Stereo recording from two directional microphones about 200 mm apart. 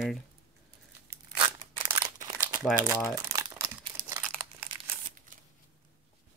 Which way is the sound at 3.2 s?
15° right (ahead or behind).